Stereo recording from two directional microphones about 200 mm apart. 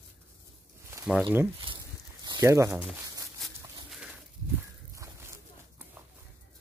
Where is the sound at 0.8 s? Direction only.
15° right (ahead or behind).